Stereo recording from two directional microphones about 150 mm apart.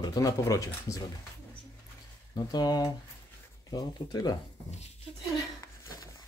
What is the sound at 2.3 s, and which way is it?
Speech, 25° left (ahead or behind).